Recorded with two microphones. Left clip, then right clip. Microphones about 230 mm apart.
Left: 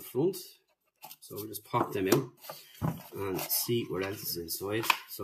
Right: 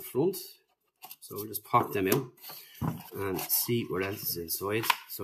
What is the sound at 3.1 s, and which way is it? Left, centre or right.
Speech, centre.